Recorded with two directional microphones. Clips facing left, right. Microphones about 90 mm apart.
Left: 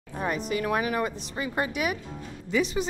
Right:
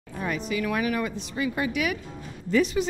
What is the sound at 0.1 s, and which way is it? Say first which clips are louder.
Music: left 1 dB; 30° left (ahead or behind).